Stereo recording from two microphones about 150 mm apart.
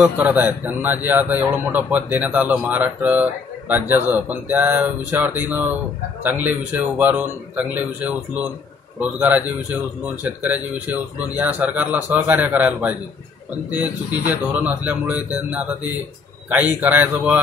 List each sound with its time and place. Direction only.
0.0 s a man's voice: 10° right (ahead or behind)